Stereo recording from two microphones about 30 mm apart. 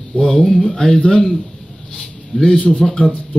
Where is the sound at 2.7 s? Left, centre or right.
Left.